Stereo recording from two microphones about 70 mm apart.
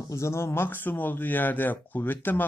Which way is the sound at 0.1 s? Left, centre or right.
Left.